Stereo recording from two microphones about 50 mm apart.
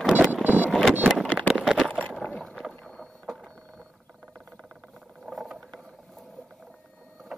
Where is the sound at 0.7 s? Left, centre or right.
Centre.